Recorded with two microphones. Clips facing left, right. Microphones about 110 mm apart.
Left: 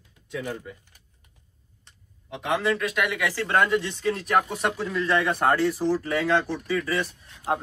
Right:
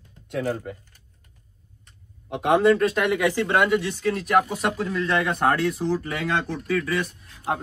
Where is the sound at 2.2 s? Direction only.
50° right (ahead or behind).